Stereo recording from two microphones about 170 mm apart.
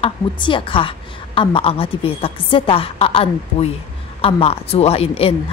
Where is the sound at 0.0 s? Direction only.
30° left (ahead or behind).